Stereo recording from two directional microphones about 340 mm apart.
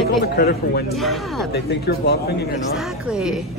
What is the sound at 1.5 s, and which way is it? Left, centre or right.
Speech, left.